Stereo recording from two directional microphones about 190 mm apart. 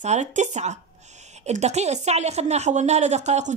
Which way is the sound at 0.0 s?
35° right (ahead or behind).